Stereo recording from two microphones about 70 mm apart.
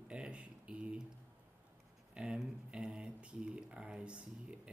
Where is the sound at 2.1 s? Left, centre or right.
Centre.